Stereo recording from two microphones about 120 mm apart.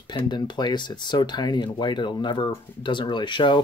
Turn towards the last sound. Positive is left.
turn(degrees=40)  # may be behind; listen again after turning